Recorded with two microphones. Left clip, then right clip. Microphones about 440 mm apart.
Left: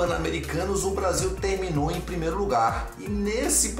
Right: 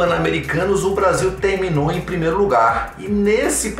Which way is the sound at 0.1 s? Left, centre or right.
Left.